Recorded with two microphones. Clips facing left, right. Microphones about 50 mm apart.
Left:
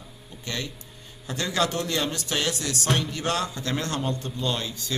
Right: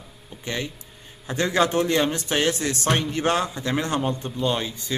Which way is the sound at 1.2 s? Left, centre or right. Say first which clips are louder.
Right 5 dB; right.